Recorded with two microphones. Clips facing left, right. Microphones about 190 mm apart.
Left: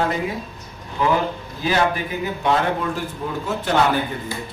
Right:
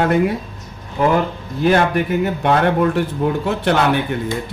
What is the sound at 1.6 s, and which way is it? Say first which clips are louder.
A man's voice: right 6 dB; 55° right (ahead or behind).